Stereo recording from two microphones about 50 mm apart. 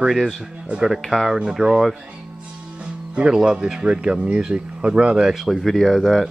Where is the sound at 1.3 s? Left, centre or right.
Centre.